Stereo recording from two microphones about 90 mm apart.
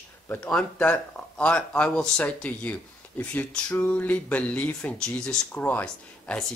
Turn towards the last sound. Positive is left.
turn(degrees=20)  # may be behind; listen again after turning